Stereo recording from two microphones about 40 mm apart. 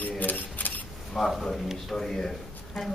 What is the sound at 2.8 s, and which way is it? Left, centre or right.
Speech, centre.